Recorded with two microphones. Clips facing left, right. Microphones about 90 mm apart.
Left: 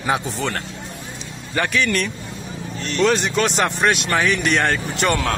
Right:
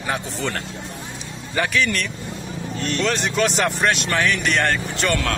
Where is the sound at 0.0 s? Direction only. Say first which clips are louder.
Left 3 dB; 5° left (ahead or behind).